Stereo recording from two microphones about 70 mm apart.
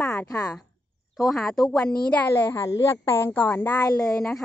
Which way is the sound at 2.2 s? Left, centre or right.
Left.